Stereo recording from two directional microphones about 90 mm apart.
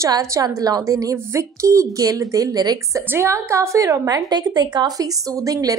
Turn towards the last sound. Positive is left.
turn(degrees=-40)  # may be behind; listen again after turning